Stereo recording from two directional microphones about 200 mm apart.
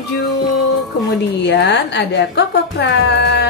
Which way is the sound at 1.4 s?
60° left (ahead or behind).